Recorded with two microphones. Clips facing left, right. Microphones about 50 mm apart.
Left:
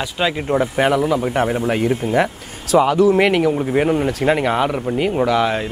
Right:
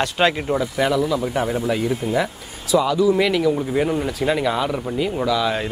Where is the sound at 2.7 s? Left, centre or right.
Left.